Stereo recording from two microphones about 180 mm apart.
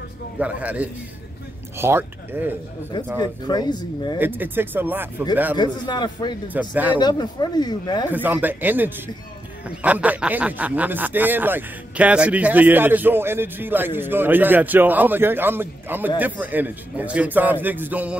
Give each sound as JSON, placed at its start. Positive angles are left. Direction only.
{"t": 0.4, "sound": "speech", "side_deg": -10}
{"t": 3.2, "sound": "speech", "side_deg": 25}
{"t": 4.2, "sound": "speech", "side_deg": -10}
{"t": 5.6, "sound": "speech", "side_deg": 25}
{"t": 6.7, "sound": "speech", "side_deg": -10}
{"t": 7.0, "sound": "speech", "side_deg": 25}
{"t": 8.1, "sound": "speech", "side_deg": -10}